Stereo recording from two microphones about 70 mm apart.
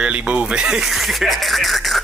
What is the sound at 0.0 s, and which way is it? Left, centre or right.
Music, centre.